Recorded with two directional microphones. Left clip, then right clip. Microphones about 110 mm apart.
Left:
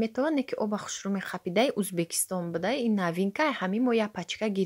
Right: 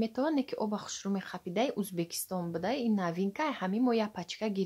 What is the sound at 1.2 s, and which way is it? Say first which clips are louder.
Speech: left 7 dB; 45° left (ahead or behind).